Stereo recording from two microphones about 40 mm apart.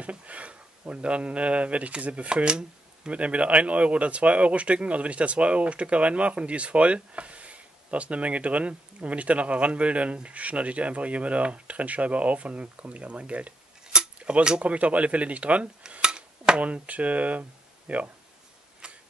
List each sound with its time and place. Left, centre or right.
0.0 s speech: right
3.1 s speech: right
14.3 s speech: centre
14.6 s speech: right
16.0 s stir: right
16.6 s speech: right